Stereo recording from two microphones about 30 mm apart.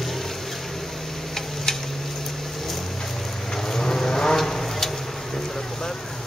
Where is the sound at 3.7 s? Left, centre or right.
Centre.